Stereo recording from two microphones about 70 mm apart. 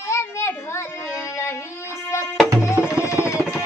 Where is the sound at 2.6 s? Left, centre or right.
Left.